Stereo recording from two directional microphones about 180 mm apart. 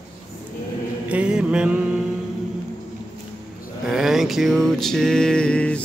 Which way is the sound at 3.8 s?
Centre (ahead or behind).